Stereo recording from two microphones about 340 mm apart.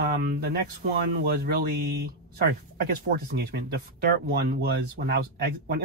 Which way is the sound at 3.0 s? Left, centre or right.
Right.